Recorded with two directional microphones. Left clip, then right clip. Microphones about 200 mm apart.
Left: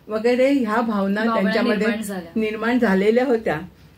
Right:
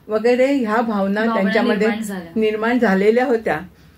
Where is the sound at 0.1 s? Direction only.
10° right (ahead or behind).